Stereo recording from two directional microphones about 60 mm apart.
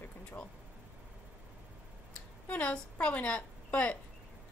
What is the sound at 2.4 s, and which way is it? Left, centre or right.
A woman's voice, left.